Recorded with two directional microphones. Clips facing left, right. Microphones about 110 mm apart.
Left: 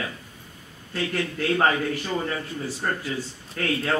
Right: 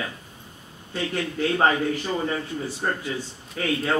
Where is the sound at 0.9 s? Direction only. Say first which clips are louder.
Even; 20° right (ahead or behind).